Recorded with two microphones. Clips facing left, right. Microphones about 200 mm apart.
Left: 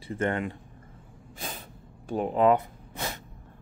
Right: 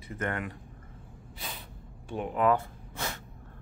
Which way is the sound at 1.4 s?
50° left (ahead or behind).